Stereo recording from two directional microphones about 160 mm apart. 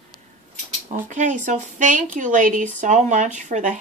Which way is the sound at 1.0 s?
50° right (ahead or behind).